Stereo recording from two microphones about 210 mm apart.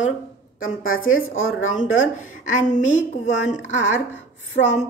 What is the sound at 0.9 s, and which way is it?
A woman's voice, 70° left (ahead or behind).